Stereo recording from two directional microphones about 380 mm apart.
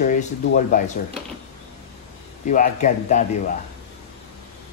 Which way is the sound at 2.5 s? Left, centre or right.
Centre.